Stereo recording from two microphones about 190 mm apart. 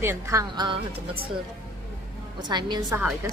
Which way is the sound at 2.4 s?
25° right (ahead or behind).